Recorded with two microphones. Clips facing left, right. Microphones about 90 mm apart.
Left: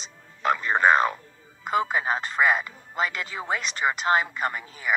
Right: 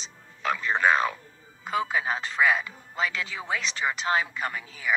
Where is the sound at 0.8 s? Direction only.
40° left (ahead or behind).